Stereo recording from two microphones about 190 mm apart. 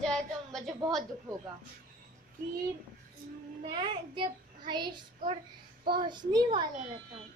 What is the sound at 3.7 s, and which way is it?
A child's voice, 25° right (ahead or behind).